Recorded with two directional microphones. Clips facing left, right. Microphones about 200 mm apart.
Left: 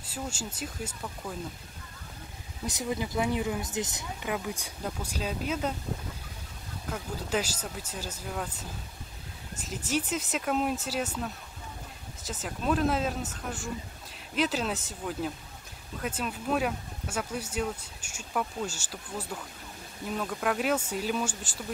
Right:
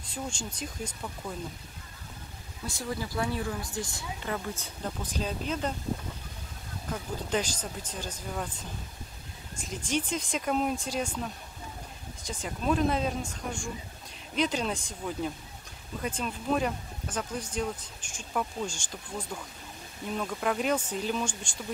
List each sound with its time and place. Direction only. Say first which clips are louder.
0.0 s speech: even; 5° left (ahead or behind)
2.6 s speech: left 3 dB; 20° left (ahead or behind)
6.9 s speech: even; 5° left (ahead or behind)
9.7 s speech: even; 5° left (ahead or behind)